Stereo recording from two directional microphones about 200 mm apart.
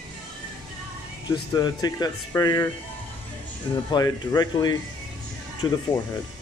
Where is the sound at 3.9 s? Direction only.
20° left (ahead or behind).